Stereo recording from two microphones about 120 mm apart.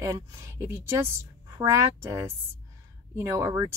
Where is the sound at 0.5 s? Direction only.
20° right (ahead or behind).